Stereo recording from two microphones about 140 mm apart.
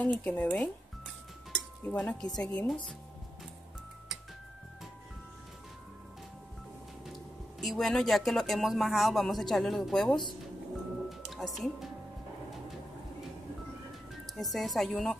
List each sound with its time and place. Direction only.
0.0 s speech: 10° left (ahead or behind)
1.9 s speech: 5° left (ahead or behind)
7.6 s speech: centre (ahead or behind)
11.1 s music: centre (ahead or behind)
14.3 s speech: centre (ahead or behind)